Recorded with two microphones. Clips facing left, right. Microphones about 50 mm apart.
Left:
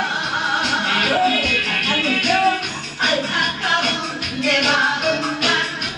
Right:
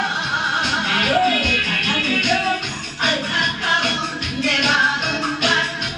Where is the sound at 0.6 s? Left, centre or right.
Centre.